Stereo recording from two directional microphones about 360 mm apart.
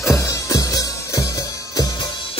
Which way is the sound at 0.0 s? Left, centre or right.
Centre.